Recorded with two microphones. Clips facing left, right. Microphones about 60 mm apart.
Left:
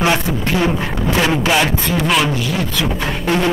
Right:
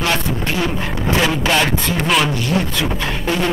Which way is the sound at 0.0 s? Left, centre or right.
Centre.